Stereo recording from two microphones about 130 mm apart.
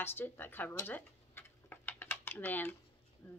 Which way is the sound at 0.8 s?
15° left (ahead or behind).